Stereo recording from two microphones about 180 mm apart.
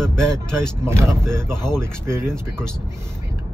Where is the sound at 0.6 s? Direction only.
5° left (ahead or behind).